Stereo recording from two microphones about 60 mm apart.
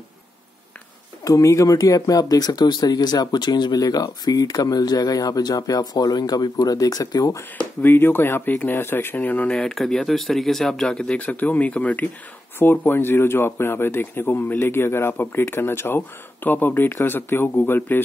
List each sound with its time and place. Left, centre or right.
1.2 s speech: left
7.8 s speech: left
9.5 s speech: centre
11.1 s speech: left
12.5 s speech: left